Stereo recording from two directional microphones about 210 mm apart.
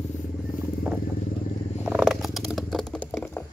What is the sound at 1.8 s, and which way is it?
Purr, 5° right (ahead or behind).